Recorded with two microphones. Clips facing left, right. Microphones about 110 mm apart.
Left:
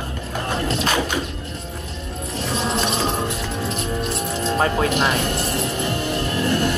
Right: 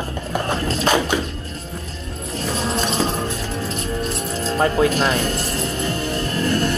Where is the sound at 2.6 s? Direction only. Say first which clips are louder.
Right 1 dB; 20° left (ahead or behind).